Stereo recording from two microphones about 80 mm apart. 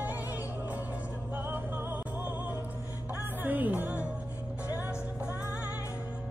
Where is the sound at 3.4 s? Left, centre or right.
Right.